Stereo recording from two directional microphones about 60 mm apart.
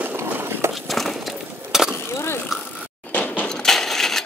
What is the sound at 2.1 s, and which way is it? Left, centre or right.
Vehicle, left.